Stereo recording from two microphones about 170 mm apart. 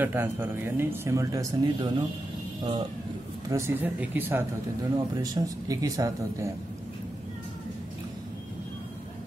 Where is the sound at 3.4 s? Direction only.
15° right (ahead or behind).